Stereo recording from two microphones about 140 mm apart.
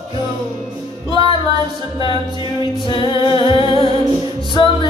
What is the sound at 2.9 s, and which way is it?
Humming, 35° left (ahead or behind).